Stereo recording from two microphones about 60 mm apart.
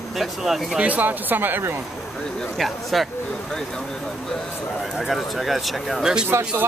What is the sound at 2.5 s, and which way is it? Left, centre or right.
Speech, centre.